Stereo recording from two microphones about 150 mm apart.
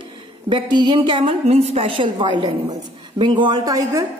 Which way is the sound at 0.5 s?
30° right (ahead or behind).